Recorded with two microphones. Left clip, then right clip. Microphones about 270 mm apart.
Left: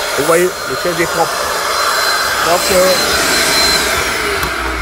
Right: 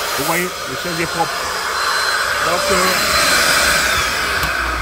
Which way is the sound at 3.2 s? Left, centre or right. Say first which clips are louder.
Left 1 dB; centre.